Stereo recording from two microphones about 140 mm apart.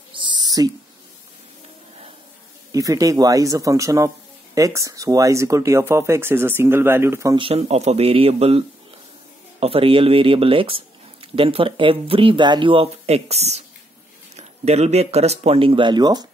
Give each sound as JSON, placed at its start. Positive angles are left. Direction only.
{"t": 0.1, "sound": "a sound", "side_deg": -35}
{"t": 2.7, "sound": "speech", "side_deg": -25}
{"t": 7.3, "sound": "speech", "side_deg": -45}